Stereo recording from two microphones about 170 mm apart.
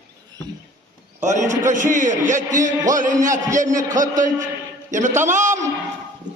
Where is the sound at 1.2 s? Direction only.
45° right (ahead or behind).